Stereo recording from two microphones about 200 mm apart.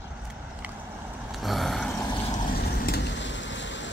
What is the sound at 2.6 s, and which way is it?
Vehicle, 50° left (ahead or behind).